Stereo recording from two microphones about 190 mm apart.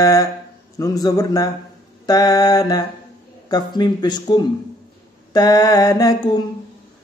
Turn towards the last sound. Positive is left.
turn(degrees=20)  # may be behind; listen again after turning